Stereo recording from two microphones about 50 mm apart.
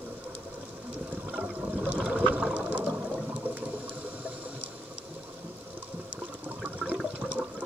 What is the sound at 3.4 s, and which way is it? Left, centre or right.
Water, right.